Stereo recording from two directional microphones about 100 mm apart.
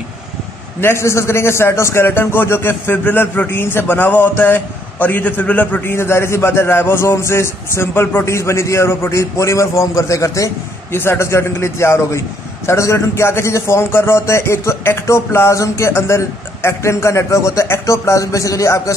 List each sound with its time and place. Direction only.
0.7 s a man's voice: 25° left (ahead or behind)